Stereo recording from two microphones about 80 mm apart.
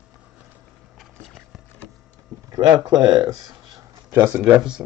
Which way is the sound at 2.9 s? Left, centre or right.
Right.